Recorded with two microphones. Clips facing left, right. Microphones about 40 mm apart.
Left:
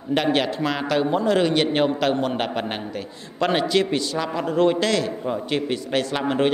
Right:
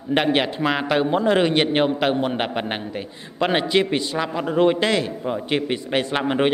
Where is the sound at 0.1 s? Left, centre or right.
Right.